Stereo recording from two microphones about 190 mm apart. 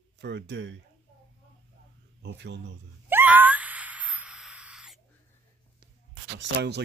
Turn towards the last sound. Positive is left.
turn(degrees=-60)  # may be behind; listen again after turning